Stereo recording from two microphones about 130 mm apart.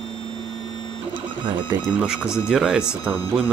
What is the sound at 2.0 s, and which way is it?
Speech, 5° right (ahead or behind).